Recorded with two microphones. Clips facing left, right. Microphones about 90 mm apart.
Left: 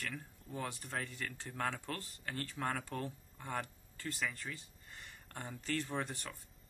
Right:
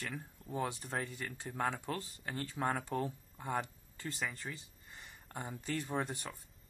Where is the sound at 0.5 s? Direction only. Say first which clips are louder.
Right 5 dB; 20° right (ahead or behind).